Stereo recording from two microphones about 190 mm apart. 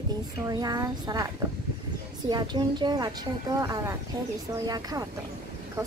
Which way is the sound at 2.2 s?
25° right (ahead or behind).